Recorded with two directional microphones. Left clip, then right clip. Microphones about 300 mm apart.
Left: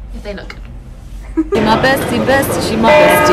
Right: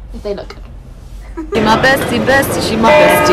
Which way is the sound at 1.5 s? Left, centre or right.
Centre.